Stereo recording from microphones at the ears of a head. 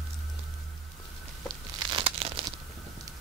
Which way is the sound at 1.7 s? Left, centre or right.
Right.